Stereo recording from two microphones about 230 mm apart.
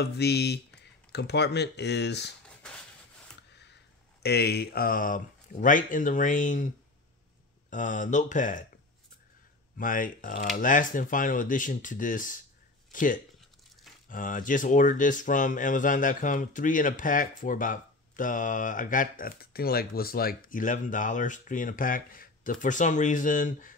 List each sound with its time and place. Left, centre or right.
0.0 s speech: left
4.2 s speech: left
7.7 s speech: left
9.8 s speech: left